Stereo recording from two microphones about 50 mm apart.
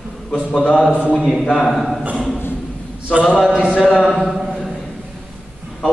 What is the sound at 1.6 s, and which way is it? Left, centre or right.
Speech, centre.